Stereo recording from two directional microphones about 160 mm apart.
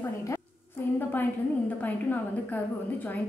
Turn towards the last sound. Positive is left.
turn(degrees=10)  # may be behind; listen again after turning